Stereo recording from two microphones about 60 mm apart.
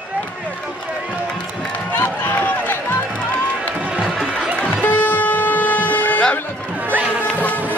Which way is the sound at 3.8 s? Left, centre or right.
Centre.